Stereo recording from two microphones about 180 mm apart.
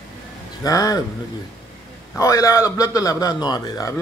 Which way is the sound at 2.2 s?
15° left (ahead or behind).